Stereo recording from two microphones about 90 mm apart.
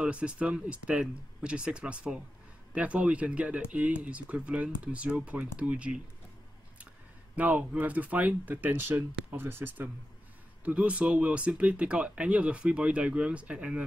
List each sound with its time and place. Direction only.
0.0 s speech: 10° right (ahead or behind)
7.3 s speech: 15° right (ahead or behind)
10.6 s speech: 15° right (ahead or behind)